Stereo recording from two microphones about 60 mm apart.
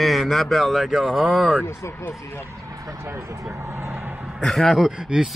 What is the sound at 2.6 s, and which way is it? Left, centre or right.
Vehicle, right.